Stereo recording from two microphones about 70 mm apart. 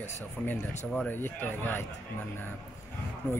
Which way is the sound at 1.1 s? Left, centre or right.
Left.